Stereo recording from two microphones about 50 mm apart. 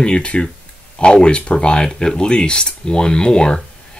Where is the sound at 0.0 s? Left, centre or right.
Left.